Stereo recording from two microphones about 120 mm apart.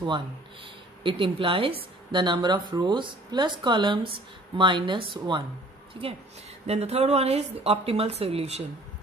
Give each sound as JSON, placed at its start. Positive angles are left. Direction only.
{"t": 1.0, "sound": "a woman's voice", "side_deg": -45}